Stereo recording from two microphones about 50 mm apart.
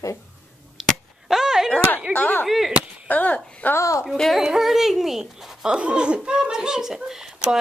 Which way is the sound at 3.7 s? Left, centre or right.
Left.